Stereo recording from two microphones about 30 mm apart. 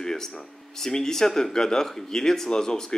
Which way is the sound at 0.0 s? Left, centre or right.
Centre.